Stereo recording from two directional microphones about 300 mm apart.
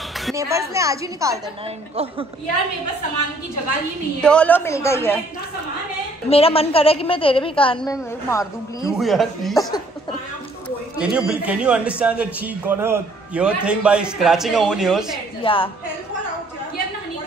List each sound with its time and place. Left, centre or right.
0.4 s a woman's voice: centre
4.2 s a woman's voice: centre
6.3 s a woman's voice: centre
11.0 s a man's voice: centre
15.4 s a woman's voice: centre